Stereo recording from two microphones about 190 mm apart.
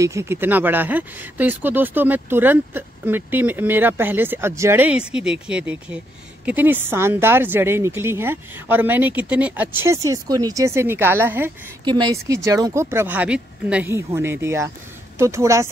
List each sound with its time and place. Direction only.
0.0 s speech: 15° right (ahead or behind)
11.8 s speech: 20° right (ahead or behind)